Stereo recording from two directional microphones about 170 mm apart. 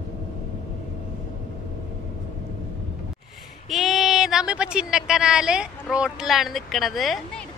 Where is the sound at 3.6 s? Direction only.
Centre (ahead or behind).